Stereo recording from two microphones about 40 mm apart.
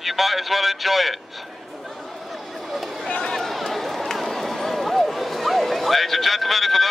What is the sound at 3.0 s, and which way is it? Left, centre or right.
Speech, left.